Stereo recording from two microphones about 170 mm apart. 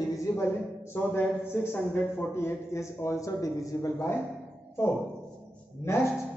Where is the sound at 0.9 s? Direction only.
15° left (ahead or behind).